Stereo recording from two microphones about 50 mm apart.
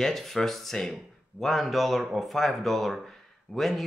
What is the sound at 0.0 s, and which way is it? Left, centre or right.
Speech, centre.